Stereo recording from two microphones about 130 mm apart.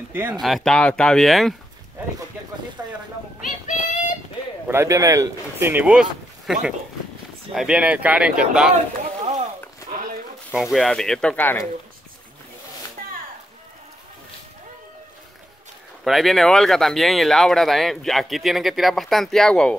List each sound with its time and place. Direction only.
0.1 s speech: 15° right (ahead or behind)
0.4 s speech: centre (ahead or behind)
2.8 s speech: 20° right (ahead or behind)
3.4 s child singing: 75° left (ahead or behind)
4.6 s speech: 20° right (ahead or behind)
9.2 s a sound: 60° right (ahead or behind)
10.5 s speech: 5° right (ahead or behind); by 11.6 s 15° left (ahead or behind)
16.0 s speech: centre (ahead or behind)